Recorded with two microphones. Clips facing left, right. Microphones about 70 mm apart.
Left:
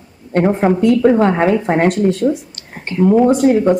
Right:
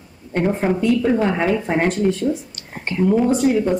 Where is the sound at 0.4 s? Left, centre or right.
Left.